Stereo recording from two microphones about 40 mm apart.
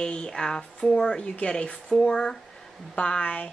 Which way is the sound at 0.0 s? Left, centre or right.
Left.